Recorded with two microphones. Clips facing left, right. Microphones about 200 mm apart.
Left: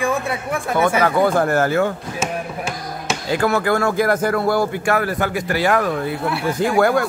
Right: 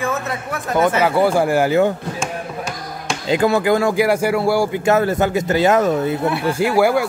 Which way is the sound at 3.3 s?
20° right (ahead or behind).